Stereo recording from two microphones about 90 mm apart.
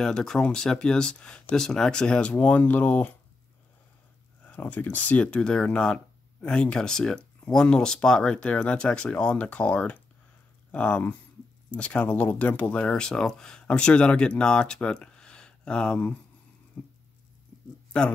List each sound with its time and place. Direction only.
0.0 s speech: 5° left (ahead or behind)
4.5 s speech: 15° left (ahead or behind)
16.8 s a sound: 15° left (ahead or behind)
17.9 s speech: 10° left (ahead or behind)